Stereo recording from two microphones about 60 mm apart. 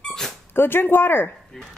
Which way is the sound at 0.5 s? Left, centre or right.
Left.